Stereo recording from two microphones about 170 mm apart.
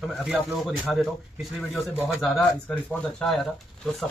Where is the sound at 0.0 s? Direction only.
Centre (ahead or behind).